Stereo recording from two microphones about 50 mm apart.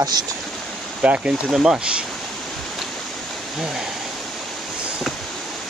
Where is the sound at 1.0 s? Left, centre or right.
Right.